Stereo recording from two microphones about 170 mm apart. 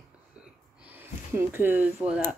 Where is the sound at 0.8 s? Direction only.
10° right (ahead or behind).